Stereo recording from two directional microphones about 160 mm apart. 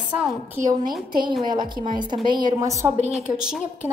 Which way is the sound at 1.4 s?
25° right (ahead or behind).